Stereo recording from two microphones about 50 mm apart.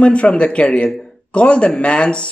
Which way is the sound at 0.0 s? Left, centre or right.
Left.